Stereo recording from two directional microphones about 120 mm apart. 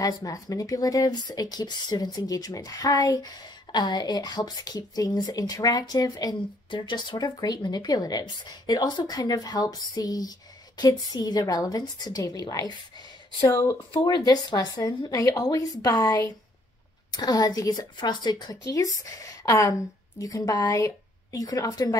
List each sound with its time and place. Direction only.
0.0 s speech: 30° left (ahead or behind)
14.0 s speech: 35° left (ahead or behind)